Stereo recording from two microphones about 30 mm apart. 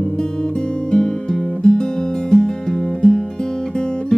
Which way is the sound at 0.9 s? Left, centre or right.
Left.